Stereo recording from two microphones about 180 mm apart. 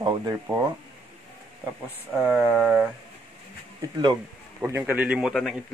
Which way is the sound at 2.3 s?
Centre (ahead or behind).